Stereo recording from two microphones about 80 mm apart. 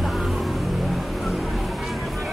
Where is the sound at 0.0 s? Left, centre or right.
Centre.